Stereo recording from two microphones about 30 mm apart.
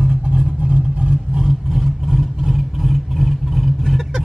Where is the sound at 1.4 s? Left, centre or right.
Centre.